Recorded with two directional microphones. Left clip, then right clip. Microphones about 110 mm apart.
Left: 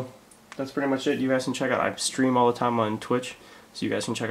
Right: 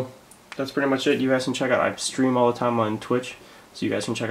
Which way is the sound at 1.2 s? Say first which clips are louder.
Right 3 dB; centre (ahead or behind).